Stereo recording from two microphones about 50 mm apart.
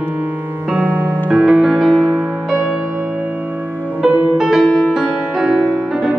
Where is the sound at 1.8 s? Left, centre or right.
Centre.